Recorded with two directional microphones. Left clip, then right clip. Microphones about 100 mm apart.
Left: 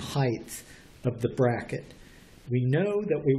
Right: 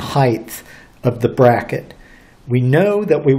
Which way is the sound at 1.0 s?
20° right (ahead or behind).